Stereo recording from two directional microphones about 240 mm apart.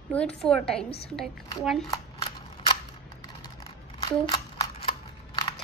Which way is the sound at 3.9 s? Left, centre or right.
Left.